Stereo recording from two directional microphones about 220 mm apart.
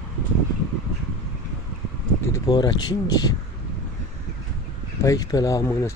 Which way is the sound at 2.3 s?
20° left (ahead or behind).